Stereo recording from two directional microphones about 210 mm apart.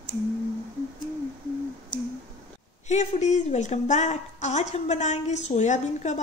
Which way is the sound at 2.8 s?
35° left (ahead or behind).